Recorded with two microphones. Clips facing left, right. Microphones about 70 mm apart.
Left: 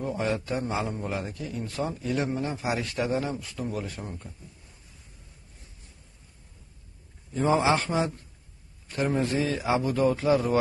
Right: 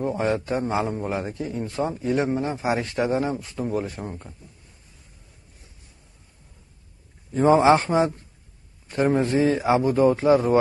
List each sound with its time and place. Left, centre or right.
0.0 s a man's voice: right
7.3 s a man's voice: right